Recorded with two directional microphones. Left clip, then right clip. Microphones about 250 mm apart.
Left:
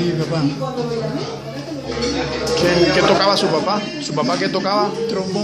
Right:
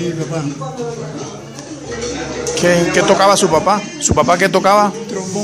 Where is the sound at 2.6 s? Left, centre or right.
Right.